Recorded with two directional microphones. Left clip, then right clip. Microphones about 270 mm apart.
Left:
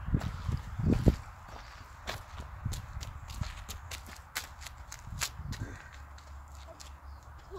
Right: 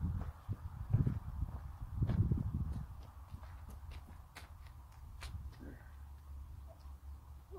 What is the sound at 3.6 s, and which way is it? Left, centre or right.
Horse, centre.